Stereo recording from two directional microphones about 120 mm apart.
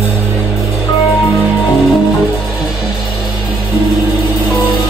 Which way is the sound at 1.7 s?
Centre (ahead or behind).